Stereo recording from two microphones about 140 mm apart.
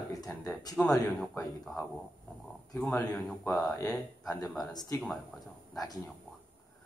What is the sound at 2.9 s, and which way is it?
Speech, 15° left (ahead or behind).